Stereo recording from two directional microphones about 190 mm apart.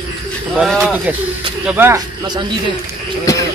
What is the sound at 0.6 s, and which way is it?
Speech, centre (ahead or behind).